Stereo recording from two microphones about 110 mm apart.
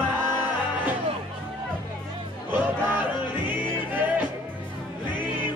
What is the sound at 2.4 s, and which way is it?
Music, 15° right (ahead or behind).